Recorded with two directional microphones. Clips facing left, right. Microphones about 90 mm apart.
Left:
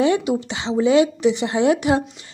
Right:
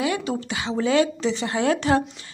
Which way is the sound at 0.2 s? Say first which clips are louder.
Left 4 dB; 15° left (ahead or behind).